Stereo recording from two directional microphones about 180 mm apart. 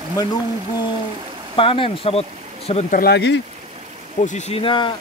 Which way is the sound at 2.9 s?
60° left (ahead or behind).